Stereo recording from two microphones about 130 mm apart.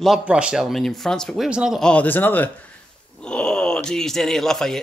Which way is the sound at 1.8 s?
10° left (ahead or behind).